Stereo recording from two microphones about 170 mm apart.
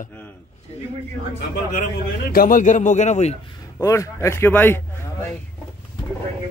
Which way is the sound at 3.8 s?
15° left (ahead or behind).